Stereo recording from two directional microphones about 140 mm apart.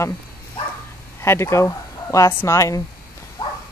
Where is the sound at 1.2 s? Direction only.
20° left (ahead or behind).